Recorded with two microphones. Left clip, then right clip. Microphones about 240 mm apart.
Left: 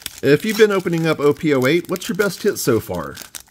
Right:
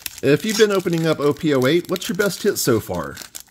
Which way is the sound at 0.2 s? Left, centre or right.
Centre.